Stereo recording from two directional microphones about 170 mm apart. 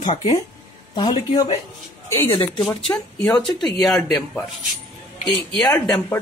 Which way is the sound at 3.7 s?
Centre (ahead or behind).